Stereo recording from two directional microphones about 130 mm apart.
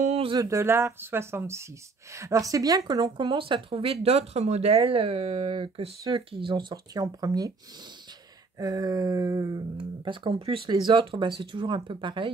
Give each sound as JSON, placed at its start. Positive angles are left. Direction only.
{"t": 0.0, "sound": "a sound", "side_deg": -50}
{"t": 0.4, "sound": "speech", "side_deg": -20}
{"t": 6.5, "sound": "speech", "side_deg": -30}
{"t": 8.5, "sound": "speech", "side_deg": -30}
{"t": 10.7, "sound": "speech", "side_deg": -35}